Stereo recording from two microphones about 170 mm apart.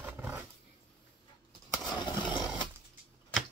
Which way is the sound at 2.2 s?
5° right (ahead or behind).